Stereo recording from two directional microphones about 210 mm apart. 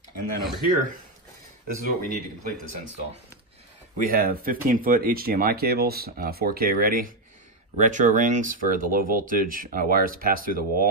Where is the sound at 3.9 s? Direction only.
45° right (ahead or behind).